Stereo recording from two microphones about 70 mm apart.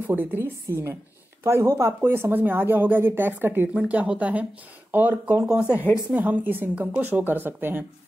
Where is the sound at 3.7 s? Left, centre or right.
Centre.